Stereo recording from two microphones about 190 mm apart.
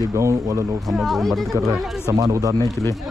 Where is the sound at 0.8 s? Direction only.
Centre (ahead or behind).